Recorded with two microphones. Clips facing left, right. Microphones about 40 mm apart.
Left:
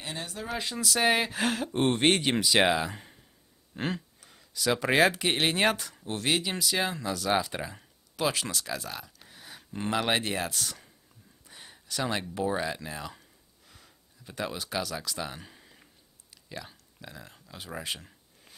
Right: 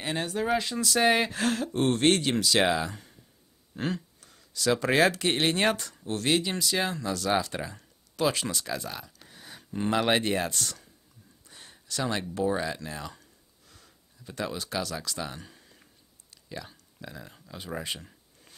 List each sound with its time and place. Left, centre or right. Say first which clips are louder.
0.0 s speech: right 7 dB; right
0.6 s speech: right 3 dB; centre
2.9 s speech: left 1 dB; left
3.7 s speech: right 1 dB; centre
11.4 s a sound: left 1 dB; centre